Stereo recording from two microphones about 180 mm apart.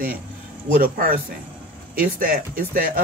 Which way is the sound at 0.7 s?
50° right (ahead or behind).